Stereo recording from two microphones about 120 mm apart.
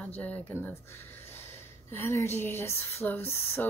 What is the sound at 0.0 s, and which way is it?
Speech, 10° left (ahead or behind).